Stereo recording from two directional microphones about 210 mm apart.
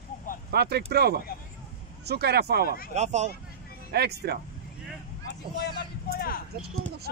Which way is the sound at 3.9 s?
50° right (ahead or behind).